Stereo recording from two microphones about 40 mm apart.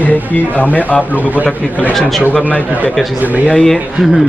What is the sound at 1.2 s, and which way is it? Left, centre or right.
Speech, right.